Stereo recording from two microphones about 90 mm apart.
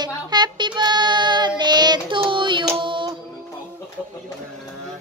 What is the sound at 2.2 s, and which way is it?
Child singing, 65° right (ahead or behind).